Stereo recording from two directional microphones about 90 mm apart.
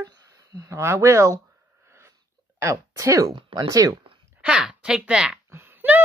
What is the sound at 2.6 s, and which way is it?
Speech, 35° right (ahead or behind).